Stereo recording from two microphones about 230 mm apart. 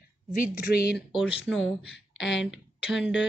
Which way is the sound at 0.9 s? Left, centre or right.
Centre.